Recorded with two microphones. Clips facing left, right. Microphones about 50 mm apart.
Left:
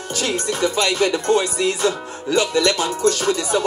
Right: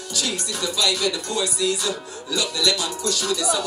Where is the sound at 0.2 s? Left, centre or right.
Left.